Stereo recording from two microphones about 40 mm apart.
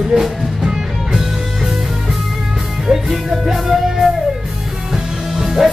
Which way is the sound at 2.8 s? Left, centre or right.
Centre.